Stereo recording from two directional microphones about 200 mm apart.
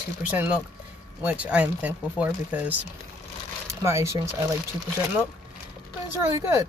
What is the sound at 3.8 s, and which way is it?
Speech, 15° right (ahead or behind).